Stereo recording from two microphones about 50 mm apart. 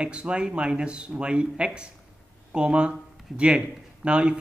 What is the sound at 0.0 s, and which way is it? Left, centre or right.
Speech, right.